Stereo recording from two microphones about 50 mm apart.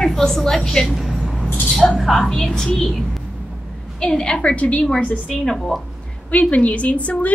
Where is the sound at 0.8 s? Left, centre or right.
Centre.